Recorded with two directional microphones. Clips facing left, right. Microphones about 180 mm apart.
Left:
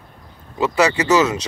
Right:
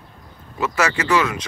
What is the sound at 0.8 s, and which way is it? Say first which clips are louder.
Speech: left 4 dB; 20° left (ahead or behind).